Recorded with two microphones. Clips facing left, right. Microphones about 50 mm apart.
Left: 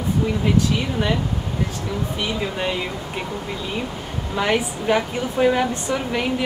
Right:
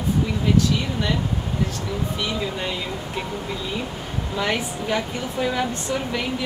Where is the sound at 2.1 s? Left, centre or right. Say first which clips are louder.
Left 2 dB; centre.